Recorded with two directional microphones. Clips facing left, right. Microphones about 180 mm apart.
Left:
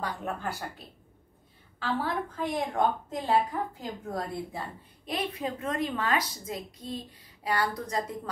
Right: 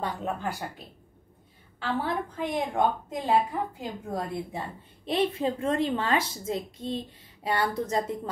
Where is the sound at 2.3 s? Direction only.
20° right (ahead or behind).